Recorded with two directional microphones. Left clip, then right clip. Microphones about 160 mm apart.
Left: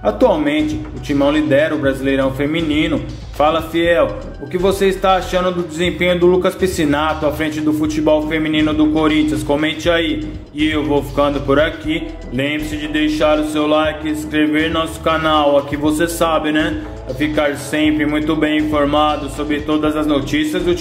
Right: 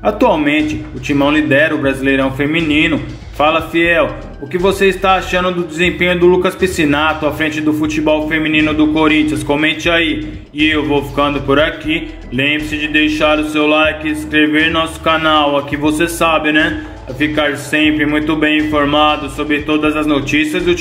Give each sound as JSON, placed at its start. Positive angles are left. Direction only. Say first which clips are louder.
{"t": 0.0, "sound": "speech", "louder": "right 2 dB", "side_deg": -20}